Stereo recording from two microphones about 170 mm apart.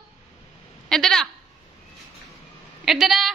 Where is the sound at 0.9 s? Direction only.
Centre (ahead or behind).